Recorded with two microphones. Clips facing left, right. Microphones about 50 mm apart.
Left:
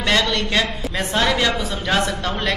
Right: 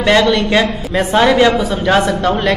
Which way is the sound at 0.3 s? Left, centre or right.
Centre.